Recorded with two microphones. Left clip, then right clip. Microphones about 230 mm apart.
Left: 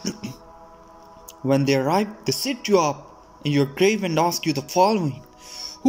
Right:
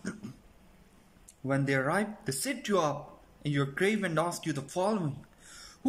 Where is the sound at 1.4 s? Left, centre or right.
Centre.